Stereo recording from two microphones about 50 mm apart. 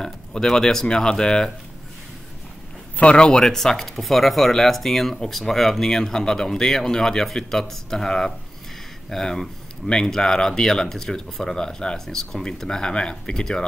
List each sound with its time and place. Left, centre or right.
0.0 s speech: centre
3.0 s speech: left
3.4 s speech: centre